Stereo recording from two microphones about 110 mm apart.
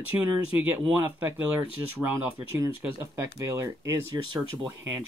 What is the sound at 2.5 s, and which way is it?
Speech, 25° right (ahead or behind).